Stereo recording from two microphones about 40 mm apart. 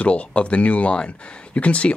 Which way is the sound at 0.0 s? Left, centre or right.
Left.